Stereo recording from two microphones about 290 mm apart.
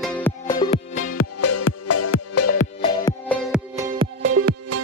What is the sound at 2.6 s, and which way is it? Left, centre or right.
Music, centre.